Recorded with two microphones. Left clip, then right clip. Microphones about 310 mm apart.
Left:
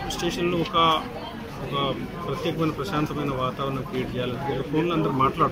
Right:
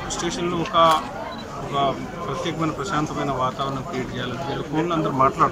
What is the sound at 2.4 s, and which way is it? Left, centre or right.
Speech, centre.